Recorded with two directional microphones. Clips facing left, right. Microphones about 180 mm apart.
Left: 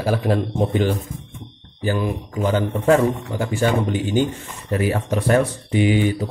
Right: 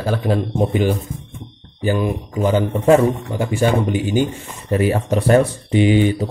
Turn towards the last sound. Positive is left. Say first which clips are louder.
# right 3 dB
turn(degrees=-25)  # may be behind; listen again after turning